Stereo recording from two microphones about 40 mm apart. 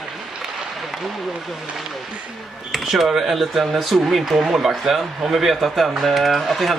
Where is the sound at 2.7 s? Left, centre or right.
Centre.